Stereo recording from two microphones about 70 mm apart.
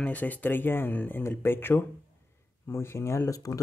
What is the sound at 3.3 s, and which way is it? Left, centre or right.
Speech, left.